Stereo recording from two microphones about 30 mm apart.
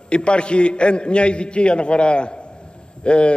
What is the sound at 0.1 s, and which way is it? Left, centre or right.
A man's voice, left.